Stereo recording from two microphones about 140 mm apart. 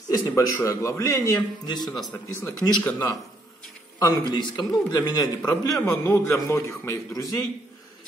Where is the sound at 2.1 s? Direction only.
15° left (ahead or behind).